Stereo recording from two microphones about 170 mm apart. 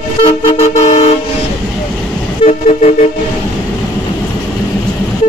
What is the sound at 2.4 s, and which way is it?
Vehicle, 40° left (ahead or behind).